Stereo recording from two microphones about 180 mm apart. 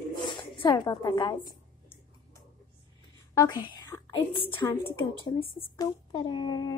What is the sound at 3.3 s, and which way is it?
A woman's voice, 20° left (ahead or behind).